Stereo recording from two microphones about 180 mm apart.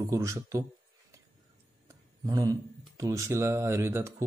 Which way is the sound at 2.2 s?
20° right (ahead or behind).